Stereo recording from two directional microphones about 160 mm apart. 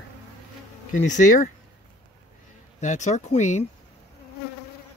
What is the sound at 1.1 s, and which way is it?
Speech, 50° left (ahead or behind).